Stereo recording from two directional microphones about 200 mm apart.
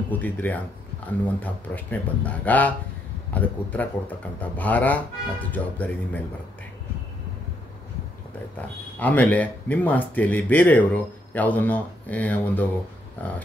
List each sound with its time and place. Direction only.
0.1 s speech: 10° left (ahead or behind)
8.5 s speech: 10° left (ahead or behind)